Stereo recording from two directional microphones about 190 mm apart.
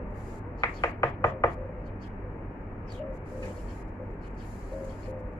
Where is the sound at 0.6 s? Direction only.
20° left (ahead or behind).